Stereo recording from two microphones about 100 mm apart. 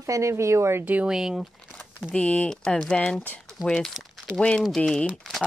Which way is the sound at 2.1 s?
10° left (ahead or behind).